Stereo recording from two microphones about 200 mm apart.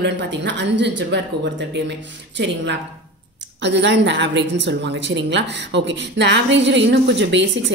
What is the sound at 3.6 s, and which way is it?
A woman's voice, 60° right (ahead or behind).